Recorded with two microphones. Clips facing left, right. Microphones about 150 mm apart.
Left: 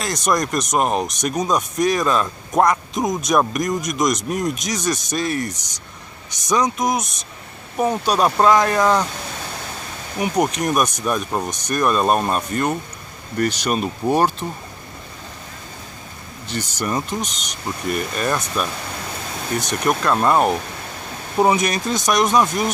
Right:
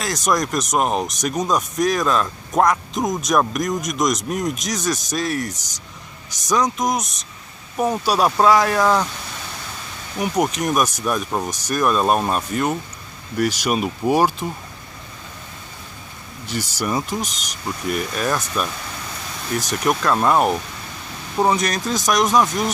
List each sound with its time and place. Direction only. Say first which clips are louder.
0.0 s speech: even; centre (ahead or behind)
10.1 s speech: left 1 dB; centre (ahead or behind)
16.4 s speech: even; 10° right (ahead or behind)
17.3 s speech: left 1 dB; 45° right (ahead or behind)
17.6 s speech: even; centre (ahead or behind)
19.8 s speech: even; centre (ahead or behind)